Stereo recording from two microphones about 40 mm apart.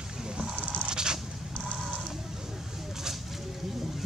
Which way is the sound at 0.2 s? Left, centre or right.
Centre.